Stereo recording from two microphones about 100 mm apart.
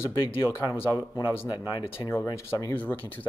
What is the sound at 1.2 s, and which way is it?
Speech, 45° left (ahead or behind).